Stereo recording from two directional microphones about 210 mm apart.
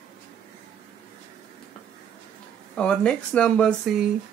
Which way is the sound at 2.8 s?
5° left (ahead or behind).